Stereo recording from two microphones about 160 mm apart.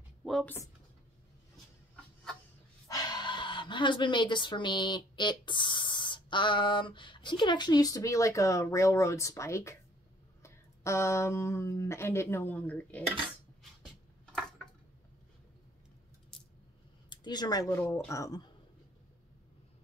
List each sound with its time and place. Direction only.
0.2 s a sound: 5° left (ahead or behind)
2.9 s speech: 25° left (ahead or behind)
17.1 s speech: 25° left (ahead or behind)